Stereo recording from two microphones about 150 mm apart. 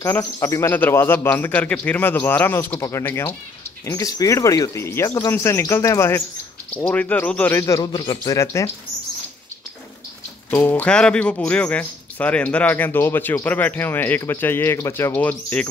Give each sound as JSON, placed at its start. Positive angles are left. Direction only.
{"t": 0.2, "sound": "speech", "side_deg": 20}
{"t": 7.6, "sound": "speech", "side_deg": 25}
{"t": 10.5, "sound": "speech", "side_deg": 10}